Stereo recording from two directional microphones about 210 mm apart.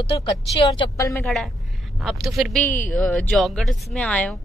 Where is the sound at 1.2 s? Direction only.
Centre (ahead or behind).